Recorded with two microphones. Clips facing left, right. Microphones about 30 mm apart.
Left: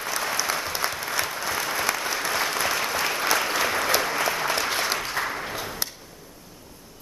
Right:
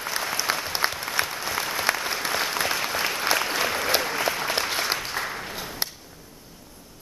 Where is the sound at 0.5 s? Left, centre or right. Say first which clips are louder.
Right 1 dB; right.